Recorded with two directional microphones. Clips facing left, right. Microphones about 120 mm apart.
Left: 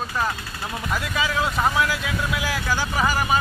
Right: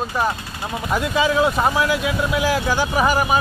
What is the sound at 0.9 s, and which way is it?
Speech, 25° right (ahead or behind).